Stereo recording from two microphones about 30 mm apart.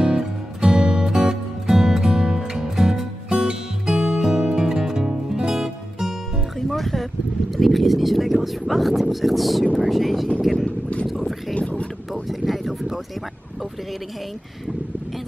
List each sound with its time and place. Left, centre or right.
0.2 s music: right
2.2 s music: right
2.5 s music: centre
6.7 s music: centre
7.5 s a sound: centre
9.1 s speech: centre
9.8 s vehicle: centre
11.1 s boat: centre
12.1 s a sound: centre